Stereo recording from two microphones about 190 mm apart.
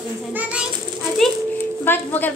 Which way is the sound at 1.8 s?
10° left (ahead or behind).